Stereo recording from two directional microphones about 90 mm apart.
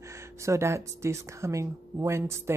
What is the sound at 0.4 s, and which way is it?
Speech, 30° right (ahead or behind).